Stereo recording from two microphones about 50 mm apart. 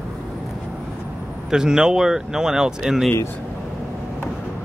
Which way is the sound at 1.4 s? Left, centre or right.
Centre.